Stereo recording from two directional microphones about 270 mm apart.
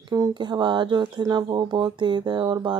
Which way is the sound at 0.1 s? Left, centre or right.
Centre.